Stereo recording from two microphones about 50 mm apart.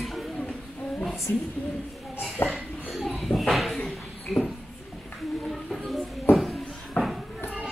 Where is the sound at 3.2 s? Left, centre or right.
Centre.